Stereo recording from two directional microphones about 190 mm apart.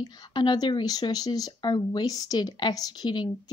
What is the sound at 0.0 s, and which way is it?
Speech, 25° left (ahead or behind).